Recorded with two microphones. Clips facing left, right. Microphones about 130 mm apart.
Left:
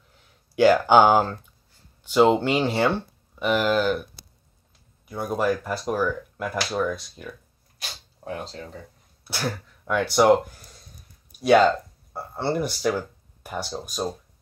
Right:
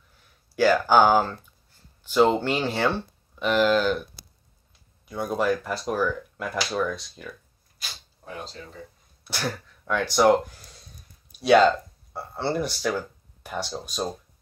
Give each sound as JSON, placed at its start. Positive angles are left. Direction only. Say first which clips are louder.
{"t": 0.6, "sound": "speech", "louder": "left 3 dB", "side_deg": 20}
{"t": 5.1, "sound": "speech", "louder": "even", "side_deg": 5}
{"t": 7.8, "sound": "a sound", "louder": "left 5 dB", "side_deg": 60}
{"t": 9.3, "sound": "speech", "louder": "left 1 dB", "side_deg": 10}
{"t": 11.3, "sound": "speech", "louder": "even", "side_deg": 10}